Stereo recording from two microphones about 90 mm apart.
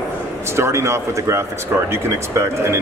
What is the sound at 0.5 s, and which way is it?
Speech, 30° right (ahead or behind).